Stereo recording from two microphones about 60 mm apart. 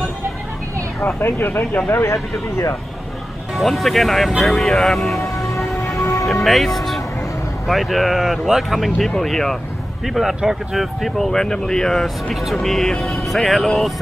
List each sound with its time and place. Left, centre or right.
1.0 s speech: left
3.5 s speech: centre
5.9 s music: left
6.4 s speech: centre